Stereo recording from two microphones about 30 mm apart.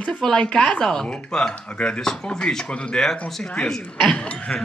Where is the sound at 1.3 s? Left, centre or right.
Centre.